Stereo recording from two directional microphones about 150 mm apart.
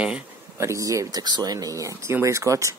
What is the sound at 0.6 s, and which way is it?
Speech, 20° right (ahead or behind).